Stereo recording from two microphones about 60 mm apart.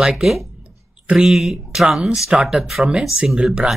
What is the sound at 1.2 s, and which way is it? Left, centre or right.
Speech, centre.